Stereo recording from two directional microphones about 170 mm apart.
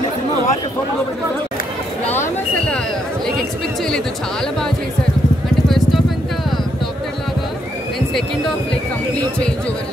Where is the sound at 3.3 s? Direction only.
5° left (ahead or behind).